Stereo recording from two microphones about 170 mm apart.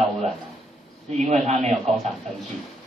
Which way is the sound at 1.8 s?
5° left (ahead or behind).